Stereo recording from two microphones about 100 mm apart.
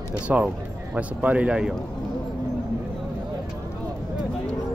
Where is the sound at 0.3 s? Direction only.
15° right (ahead or behind).